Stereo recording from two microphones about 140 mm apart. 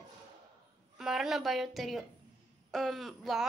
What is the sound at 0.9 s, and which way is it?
Speech, 5° right (ahead or behind).